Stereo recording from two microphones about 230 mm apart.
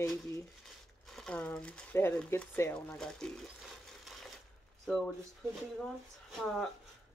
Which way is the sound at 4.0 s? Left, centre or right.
Centre.